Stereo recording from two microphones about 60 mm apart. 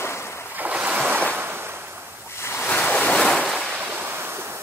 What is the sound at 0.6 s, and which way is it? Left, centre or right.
Waves, right.